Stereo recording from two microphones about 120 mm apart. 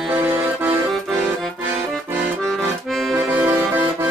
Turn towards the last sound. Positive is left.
turn(degrees=-15)  # may be behind; listen again after turning